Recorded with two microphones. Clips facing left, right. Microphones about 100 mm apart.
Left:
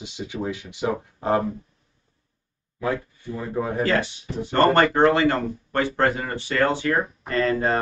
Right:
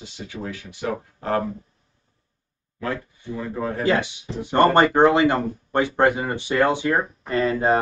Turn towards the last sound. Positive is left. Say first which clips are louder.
# right 2 dB
turn(degrees=-15)  # may be behind; listen again after turning